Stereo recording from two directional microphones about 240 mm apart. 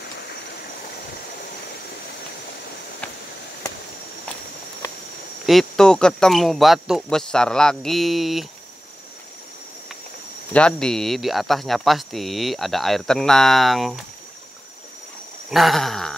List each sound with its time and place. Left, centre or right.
5.5 s speech: centre
10.5 s speech: centre
15.5 s speech: centre